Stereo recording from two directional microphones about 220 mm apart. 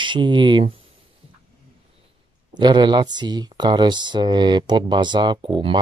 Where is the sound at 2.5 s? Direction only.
20° right (ahead or behind).